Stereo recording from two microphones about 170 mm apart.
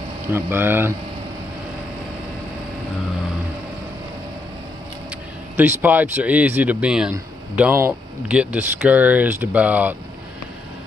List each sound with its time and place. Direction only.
0.3 s speech: 15° right (ahead or behind)
5.6 s speech: 10° right (ahead or behind)